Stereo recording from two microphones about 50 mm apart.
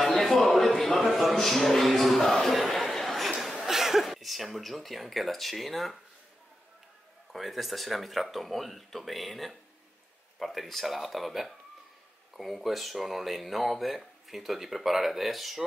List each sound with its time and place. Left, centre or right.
0.0 s a sound: centre
3.6 s speech: centre
7.3 s speech: centre